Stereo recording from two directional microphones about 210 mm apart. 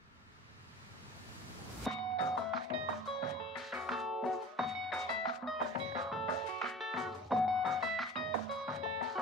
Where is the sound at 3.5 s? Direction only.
Centre (ahead or behind).